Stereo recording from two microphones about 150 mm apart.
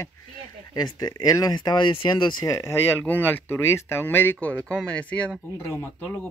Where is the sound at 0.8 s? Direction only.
25° left (ahead or behind).